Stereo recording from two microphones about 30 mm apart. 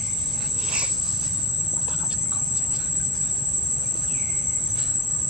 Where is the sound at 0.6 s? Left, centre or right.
Right.